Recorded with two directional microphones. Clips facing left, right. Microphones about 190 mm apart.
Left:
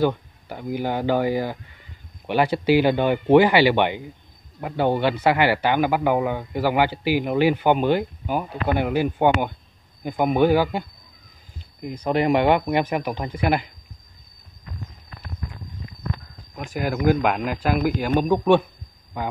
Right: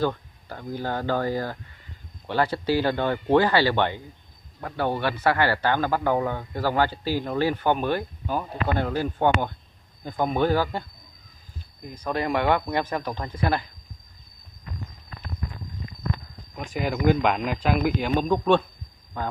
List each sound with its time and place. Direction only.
0.0 s a man's voice: 15° left (ahead or behind)
16.5 s a man's voice: 5° left (ahead or behind)